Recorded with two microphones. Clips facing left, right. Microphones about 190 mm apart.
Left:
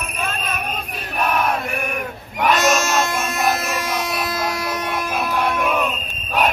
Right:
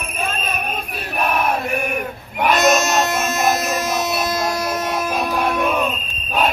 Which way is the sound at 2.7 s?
20° right (ahead or behind).